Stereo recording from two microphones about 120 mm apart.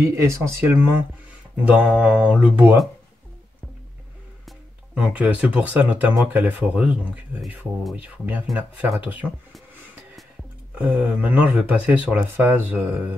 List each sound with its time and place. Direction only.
0.0 s speech: 25° right (ahead or behind)
4.9 s speech: 10° right (ahead or behind)
10.7 s speech: 10° right (ahead or behind)